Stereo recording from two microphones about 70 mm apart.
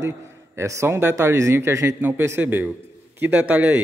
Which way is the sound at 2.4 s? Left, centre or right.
Right.